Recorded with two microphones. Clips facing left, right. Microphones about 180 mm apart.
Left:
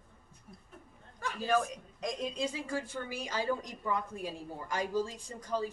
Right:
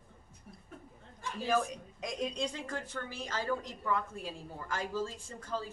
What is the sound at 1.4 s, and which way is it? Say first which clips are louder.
A woman's voice: left 1 dB; centre (ahead or behind).